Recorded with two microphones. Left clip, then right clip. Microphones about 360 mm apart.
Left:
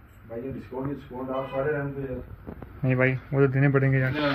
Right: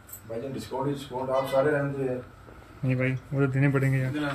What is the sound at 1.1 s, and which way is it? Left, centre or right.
Speech, right.